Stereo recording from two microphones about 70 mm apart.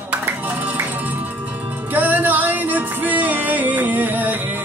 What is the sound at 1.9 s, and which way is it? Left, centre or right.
Music, right.